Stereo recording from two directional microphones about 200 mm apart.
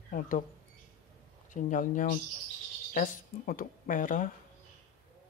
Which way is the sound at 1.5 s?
40° left (ahead or behind).